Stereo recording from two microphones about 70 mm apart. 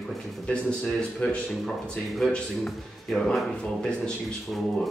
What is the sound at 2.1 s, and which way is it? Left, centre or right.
Speech, centre.